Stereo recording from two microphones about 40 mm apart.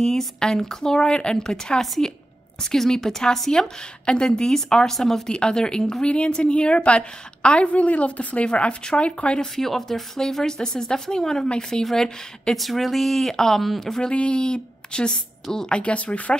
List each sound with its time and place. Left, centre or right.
0.0 s speech: centre
5.3 s a woman's voice: left
9.6 s speech: centre
11.8 s speech: centre
14.0 s a woman's voice: left
15.7 s speech: left